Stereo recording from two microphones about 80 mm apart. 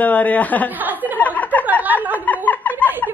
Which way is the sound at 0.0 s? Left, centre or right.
Centre.